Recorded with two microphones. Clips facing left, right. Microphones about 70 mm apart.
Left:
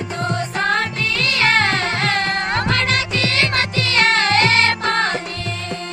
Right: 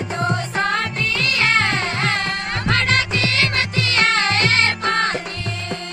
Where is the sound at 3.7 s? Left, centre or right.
Centre.